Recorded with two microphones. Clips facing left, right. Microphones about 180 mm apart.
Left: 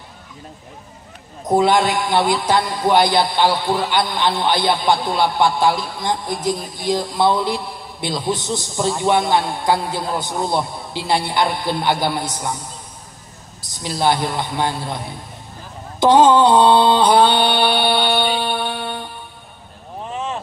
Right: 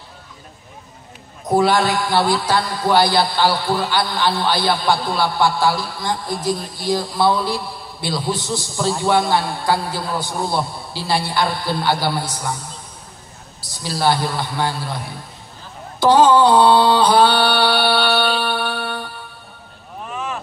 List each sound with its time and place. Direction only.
1.5 s a man's voice: 20° left (ahead or behind)
13.8 s a man's voice: 20° left (ahead or behind)
16.0 s mantra: 20° left (ahead or behind)
20.1 s vehicle: 25° left (ahead or behind)